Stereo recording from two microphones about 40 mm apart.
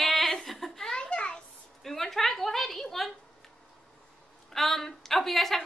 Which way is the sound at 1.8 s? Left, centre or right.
Centre.